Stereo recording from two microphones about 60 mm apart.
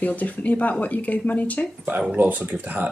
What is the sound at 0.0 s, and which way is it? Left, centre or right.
Speech, left.